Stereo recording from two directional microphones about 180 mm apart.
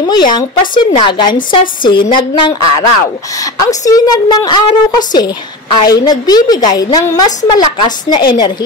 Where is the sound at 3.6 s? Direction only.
20° left (ahead or behind).